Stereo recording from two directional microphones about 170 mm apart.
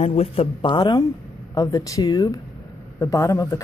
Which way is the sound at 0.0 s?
40° left (ahead or behind).